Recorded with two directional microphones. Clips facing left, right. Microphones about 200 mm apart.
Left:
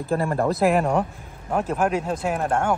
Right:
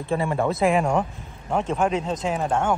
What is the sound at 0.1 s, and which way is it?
Speech, centre (ahead or behind).